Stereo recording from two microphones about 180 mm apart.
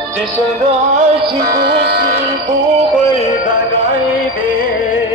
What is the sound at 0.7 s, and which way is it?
Music, 35° right (ahead or behind).